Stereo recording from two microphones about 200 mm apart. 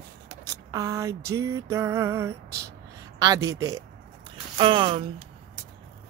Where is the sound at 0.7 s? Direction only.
15° right (ahead or behind).